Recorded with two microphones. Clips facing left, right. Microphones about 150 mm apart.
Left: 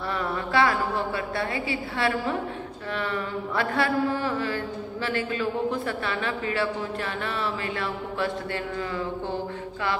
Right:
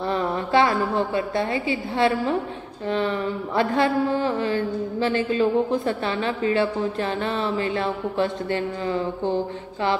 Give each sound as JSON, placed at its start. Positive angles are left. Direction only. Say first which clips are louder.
{"t": 0.1, "sound": "a woman's voice", "louder": "right 5 dB", "side_deg": -25}